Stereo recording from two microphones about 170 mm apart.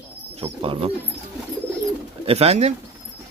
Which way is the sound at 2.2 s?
35° right (ahead or behind).